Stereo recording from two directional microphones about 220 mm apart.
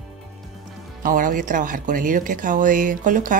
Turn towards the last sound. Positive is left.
turn(degrees=-35)  # may be behind; listen again after turning